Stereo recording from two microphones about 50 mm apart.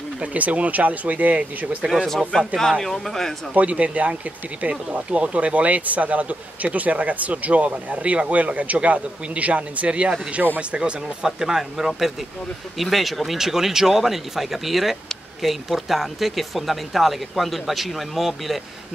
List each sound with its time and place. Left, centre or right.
0.2 s speech: right
2.0 s speech: centre
3.5 s speech: right; by 18.6 s centre